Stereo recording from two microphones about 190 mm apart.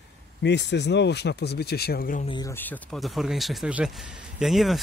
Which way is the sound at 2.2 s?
25° left (ahead or behind).